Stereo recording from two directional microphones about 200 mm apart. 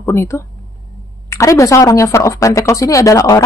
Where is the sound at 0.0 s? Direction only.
15° left (ahead or behind).